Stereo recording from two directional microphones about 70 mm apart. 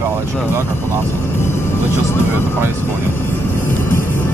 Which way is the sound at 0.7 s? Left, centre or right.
Left.